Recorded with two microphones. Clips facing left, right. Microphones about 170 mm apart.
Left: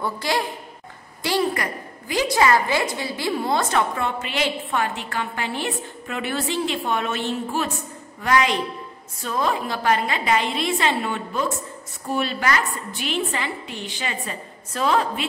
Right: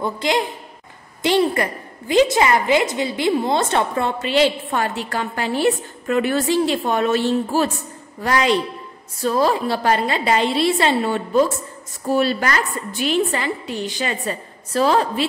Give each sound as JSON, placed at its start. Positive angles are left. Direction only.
{"t": 0.0, "sound": "a woman's voice", "side_deg": -20}